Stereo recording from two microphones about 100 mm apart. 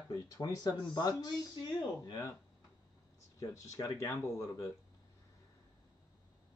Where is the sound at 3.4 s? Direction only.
35° left (ahead or behind).